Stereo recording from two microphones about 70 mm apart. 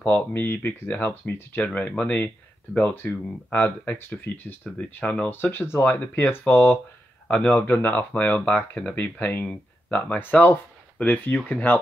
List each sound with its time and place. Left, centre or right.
0.0 s speech: left